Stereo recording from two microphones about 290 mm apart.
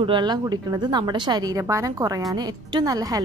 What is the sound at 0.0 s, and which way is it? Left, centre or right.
Speech, centre.